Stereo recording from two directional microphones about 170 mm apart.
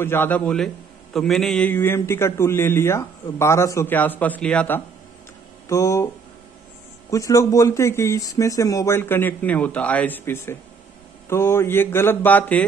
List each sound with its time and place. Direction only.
0.0 s a man's voice: 15° left (ahead or behind)
7.1 s a man's voice: 20° left (ahead or behind)